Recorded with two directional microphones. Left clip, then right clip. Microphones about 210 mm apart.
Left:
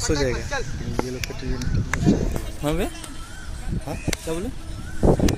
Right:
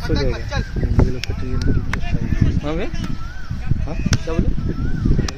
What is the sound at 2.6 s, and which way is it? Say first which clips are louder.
Speech: left 3 dB; 60° left (ahead or behind).